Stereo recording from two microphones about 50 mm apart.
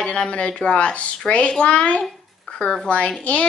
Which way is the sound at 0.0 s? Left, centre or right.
Left.